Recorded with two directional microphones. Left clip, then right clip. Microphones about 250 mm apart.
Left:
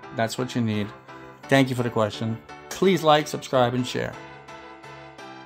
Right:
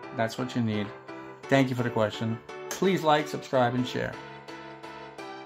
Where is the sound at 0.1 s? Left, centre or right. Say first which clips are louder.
Left 4 dB; left.